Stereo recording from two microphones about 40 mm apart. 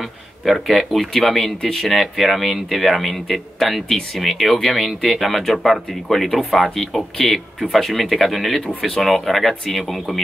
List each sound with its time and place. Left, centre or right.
0.5 s speech: centre